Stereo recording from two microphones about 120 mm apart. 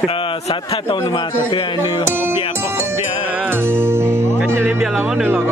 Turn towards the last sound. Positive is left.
turn(degrees=-10)  # may be behind; listen again after turning